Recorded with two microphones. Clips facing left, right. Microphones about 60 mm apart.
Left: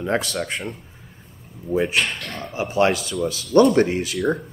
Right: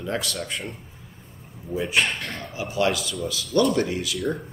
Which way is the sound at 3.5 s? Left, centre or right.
Left.